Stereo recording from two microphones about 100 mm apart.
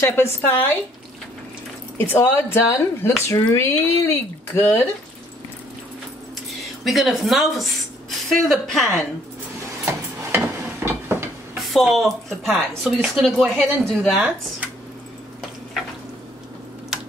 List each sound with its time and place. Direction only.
0.0 s speech: 25° left (ahead or behind)
2.0 s speech: 20° left (ahead or behind)
6.6 s a woman's voice: centre (ahead or behind)
9.8 s a sound: 25° right (ahead or behind)
11.5 s a woman's voice: centre (ahead or behind)